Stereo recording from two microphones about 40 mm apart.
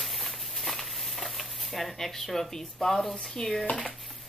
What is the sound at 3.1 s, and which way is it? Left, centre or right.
Speech, left.